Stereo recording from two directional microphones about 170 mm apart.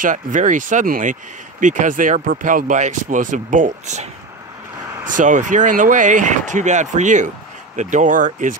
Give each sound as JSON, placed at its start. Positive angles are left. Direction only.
{"t": 0.0, "sound": "speech", "side_deg": -50}
{"t": 5.1, "sound": "speech", "side_deg": -50}